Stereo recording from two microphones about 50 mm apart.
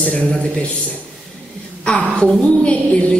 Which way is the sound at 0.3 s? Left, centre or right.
Left.